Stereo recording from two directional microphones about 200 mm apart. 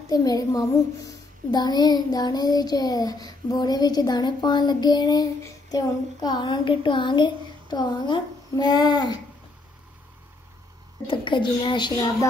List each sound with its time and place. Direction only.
0.1 s a child's voice: 20° left (ahead or behind)
11.1 s a child's voice: 25° left (ahead or behind)